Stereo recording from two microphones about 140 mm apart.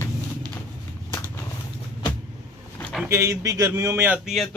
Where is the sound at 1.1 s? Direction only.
20° left (ahead or behind).